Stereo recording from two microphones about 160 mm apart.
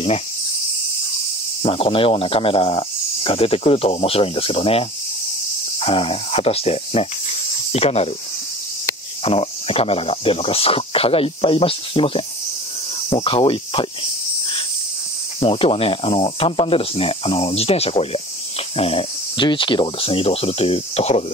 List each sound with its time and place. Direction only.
1.6 s speech: 35° left (ahead or behind)
9.2 s speech: 35° left (ahead or behind)
15.4 s speech: 35° left (ahead or behind)